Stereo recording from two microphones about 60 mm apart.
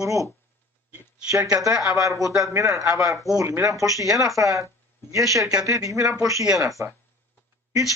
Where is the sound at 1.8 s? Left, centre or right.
Right.